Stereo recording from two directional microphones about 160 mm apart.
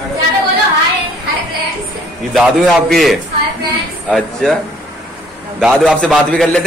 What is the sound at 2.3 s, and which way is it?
A man's voice, centre (ahead or behind).